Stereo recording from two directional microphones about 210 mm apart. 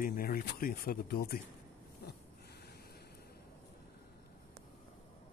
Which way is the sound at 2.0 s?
50° left (ahead or behind).